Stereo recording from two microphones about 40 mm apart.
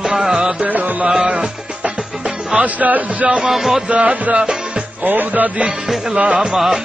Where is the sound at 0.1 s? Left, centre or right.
Centre.